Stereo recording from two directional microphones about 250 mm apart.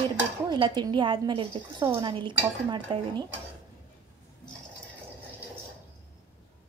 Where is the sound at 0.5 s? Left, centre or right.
Centre.